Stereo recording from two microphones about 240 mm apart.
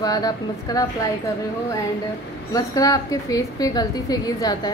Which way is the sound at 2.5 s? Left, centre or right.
Centre.